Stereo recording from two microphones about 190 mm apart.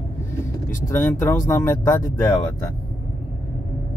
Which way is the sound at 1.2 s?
10° left (ahead or behind).